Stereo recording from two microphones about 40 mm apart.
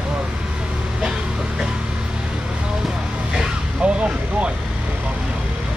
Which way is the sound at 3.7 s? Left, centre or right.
Right.